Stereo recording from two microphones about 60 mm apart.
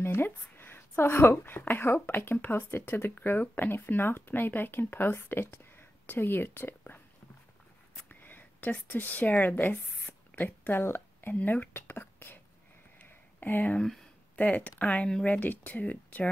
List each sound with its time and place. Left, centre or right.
0.0 s a woman's voice: left
8.1 s speech: left
13.0 s a sound: left
14.3 s speech: left